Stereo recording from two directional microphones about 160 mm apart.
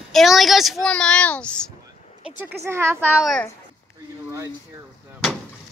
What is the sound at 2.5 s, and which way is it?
Speech, 15° right (ahead or behind).